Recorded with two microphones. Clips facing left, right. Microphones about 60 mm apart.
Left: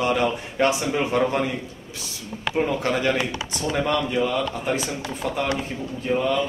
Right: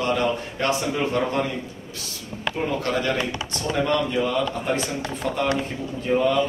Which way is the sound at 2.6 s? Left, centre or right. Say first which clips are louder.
Right 1 dB; centre.